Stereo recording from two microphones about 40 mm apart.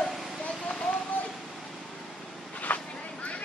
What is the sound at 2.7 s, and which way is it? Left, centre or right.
Vehicle, left.